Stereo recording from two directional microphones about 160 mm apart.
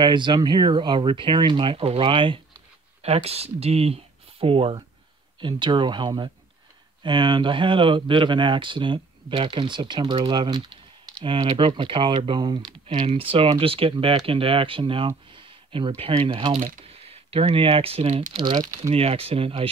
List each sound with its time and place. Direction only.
0.0 s speech: 30° right (ahead or behind)
16.5 s speech: 55° right (ahead or behind)
16.8 s speech: 40° right (ahead or behind)